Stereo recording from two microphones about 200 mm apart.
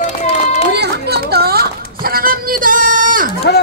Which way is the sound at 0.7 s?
55° right (ahead or behind).